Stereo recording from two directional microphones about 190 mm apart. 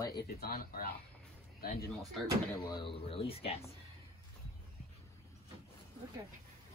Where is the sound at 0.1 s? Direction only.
55° left (ahead or behind).